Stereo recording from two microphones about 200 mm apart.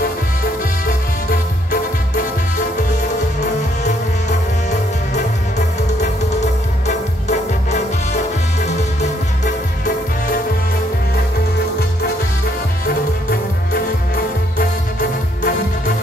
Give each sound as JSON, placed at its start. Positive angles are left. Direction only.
{"t": 3.8, "sound": "music", "side_deg": 40}
{"t": 6.9, "sound": "music", "side_deg": 35}
{"t": 9.4, "sound": "music", "side_deg": 45}
{"t": 12.8, "sound": "music", "side_deg": 45}